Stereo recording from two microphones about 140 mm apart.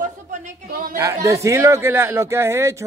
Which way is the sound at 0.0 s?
65° right (ahead or behind).